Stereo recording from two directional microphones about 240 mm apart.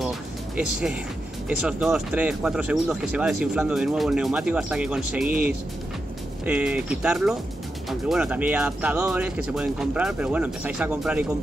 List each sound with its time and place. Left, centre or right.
0.6 s speech: centre
5.3 s speech: right
6.4 s speech: centre